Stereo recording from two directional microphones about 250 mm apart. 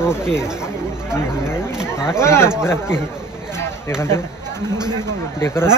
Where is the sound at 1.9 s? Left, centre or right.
Centre.